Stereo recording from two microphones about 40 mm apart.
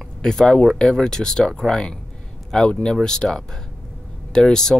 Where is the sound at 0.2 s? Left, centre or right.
Centre.